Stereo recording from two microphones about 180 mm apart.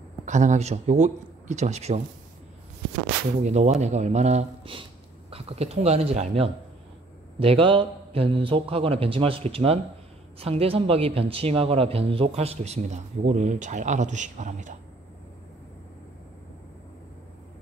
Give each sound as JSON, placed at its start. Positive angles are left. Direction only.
{"t": 0.2, "sound": "a man's voice", "side_deg": -45}
{"t": 3.4, "sound": "speech", "side_deg": -40}